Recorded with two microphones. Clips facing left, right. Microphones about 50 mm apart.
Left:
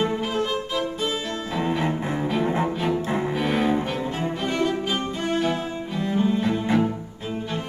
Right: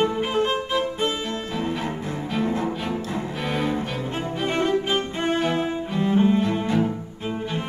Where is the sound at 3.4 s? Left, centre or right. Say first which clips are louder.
Left 2 dB; centre.